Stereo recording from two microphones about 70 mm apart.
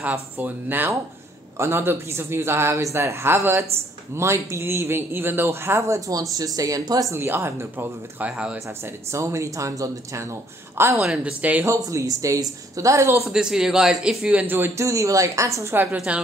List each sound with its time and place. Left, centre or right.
0.1 s speech: right
7.2 s speech: right
8.6 s speech: right
11.0 s a man's voice: centre
11.6 s speech: right
13.2 s a man's voice: centre
14.4 s speech: right
14.8 s speech: right
15.7 s speech: right